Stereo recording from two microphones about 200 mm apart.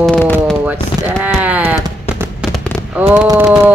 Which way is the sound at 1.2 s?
5° right (ahead or behind).